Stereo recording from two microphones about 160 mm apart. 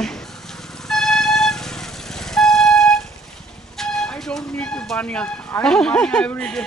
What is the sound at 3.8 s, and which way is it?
Speech, 5° left (ahead or behind).